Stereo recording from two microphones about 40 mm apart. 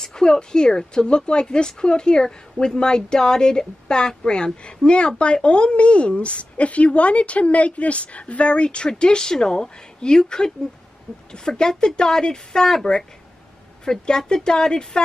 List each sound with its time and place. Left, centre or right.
0.0 s a woman's voice: centre